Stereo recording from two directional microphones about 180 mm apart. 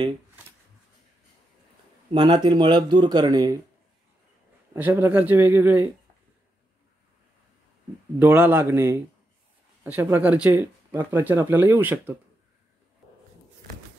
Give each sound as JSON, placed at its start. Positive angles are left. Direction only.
{"t": 2.1, "sound": "speech", "side_deg": -25}
{"t": 4.7, "sound": "speech", "side_deg": -10}
{"t": 8.2, "sound": "speech", "side_deg": -10}